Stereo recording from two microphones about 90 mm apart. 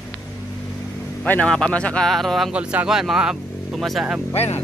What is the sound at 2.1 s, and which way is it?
Speech, centre (ahead or behind).